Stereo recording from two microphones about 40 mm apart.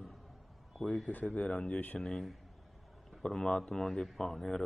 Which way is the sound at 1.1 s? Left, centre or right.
Left.